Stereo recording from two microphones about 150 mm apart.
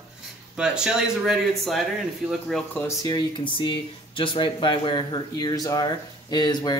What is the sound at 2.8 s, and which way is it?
Speech, 25° left (ahead or behind).